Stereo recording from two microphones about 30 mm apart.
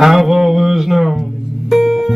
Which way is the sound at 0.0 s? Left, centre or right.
Centre.